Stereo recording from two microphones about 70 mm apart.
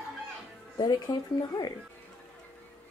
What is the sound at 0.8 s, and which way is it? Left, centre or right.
Speech, left.